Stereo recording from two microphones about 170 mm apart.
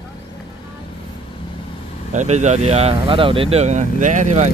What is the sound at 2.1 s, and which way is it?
Speech, 40° right (ahead or behind).